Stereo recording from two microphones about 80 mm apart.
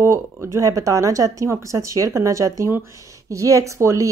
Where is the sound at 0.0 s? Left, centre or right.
Right.